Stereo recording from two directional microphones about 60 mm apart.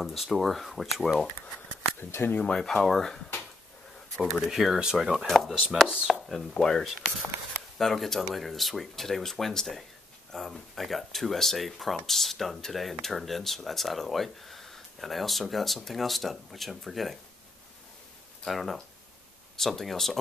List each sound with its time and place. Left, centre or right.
0.0 s speech: centre
2.0 s speech: left
2.3 s speech: centre
4.5 s speech: centre
5.2 s speech: centre
5.9 s speech: centre
6.1 s speech: centre
18.4 s speech: centre